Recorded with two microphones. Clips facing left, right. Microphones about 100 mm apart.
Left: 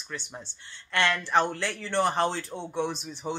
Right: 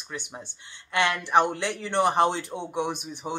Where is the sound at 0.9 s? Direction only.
15° right (ahead or behind).